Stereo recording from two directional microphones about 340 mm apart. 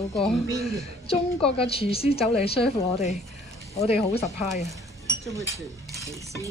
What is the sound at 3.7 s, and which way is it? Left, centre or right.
Speech, centre.